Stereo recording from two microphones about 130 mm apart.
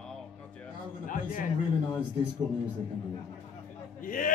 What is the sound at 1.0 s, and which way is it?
Speech, 90° left.